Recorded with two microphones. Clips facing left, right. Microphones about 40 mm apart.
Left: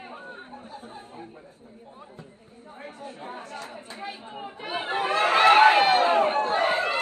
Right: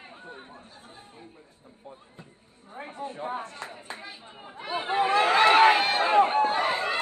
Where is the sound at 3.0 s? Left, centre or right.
Right.